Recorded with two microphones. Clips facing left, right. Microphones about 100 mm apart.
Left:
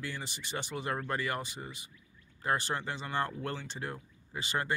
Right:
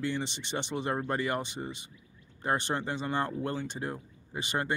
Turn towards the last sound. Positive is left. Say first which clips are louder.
# right 2 dB
turn(degrees=-20)  # may be behind; listen again after turning